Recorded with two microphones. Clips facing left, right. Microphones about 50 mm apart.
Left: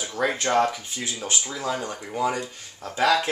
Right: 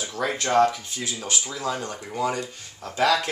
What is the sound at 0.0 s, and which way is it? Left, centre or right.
Speech, centre.